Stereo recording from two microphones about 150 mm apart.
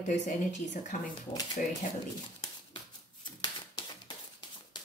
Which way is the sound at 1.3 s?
30° left (ahead or behind).